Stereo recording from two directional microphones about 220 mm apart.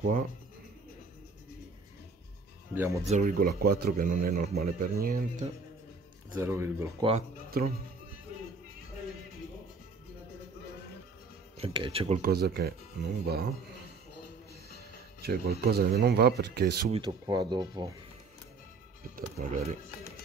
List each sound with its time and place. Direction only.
2.7 s speech: 10° right (ahead or behind)
3.1 s speech: 35° right (ahead or behind)
6.4 s speech: 10° right (ahead or behind)
11.5 s speech: 25° right (ahead or behind)
12.2 s speech: 45° right (ahead or behind)
15.2 s speech: 45° right (ahead or behind)
16.9 s speech: 20° right (ahead or behind)
19.1 s speech: 30° right (ahead or behind)